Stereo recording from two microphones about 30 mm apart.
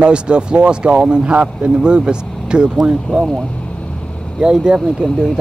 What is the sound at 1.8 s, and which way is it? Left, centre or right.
Speech, right.